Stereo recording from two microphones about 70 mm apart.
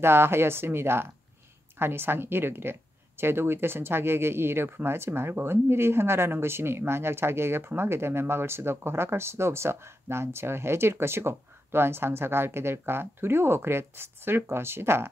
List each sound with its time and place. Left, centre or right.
0.0 s speech: right